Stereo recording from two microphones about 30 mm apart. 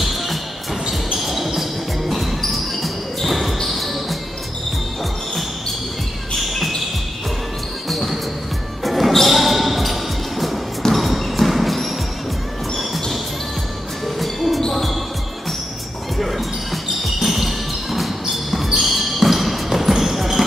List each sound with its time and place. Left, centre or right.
0.0 s music: centre
0.8 s basketball bounce: centre
3.6 s music: centre
7.9 s basketball bounce: centre
8.8 s music: centre
9.3 s basketball bounce: centre
14.0 s music: centre
14.7 s basketball bounce: centre
16.2 s basketball bounce: centre